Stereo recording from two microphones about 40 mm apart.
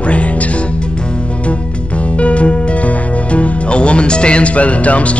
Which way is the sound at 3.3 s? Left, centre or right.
Left.